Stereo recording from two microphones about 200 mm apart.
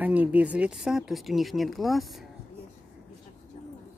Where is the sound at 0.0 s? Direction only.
5° right (ahead or behind).